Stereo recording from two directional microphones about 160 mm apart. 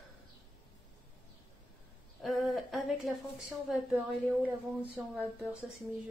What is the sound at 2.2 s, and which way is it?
A woman's voice, centre (ahead or behind).